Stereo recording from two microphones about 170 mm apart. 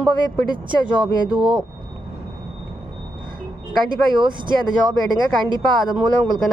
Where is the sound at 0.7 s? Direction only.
30° right (ahead or behind).